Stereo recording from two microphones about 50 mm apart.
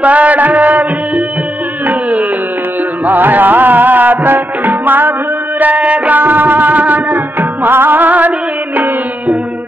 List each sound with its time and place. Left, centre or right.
0.0 s music: right
5.6 s music: right